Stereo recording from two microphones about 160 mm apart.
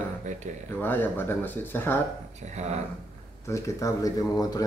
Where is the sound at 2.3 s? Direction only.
45° right (ahead or behind).